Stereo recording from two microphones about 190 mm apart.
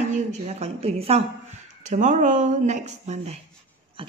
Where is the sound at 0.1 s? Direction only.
35° right (ahead or behind).